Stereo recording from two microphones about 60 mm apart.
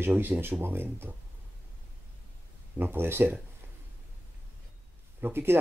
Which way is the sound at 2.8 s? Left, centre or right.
Right.